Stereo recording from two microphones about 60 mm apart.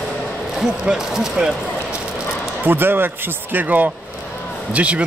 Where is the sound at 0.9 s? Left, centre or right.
Centre.